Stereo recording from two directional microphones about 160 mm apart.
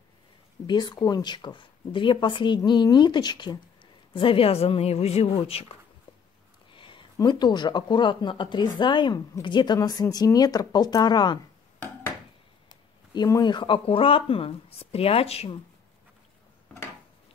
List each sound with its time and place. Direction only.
0.7 s speech: 25° left (ahead or behind)
13.1 s speech: 25° left (ahead or behind)